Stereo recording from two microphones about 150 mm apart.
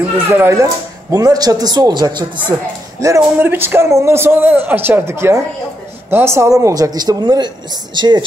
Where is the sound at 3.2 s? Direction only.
15° right (ahead or behind).